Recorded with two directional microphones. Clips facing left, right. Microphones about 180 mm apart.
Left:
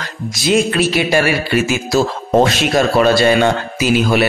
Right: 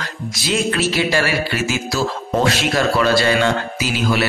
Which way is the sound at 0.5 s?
15° left (ahead or behind).